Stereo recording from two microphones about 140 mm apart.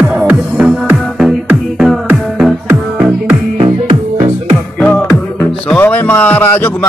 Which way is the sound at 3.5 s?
50° right (ahead or behind).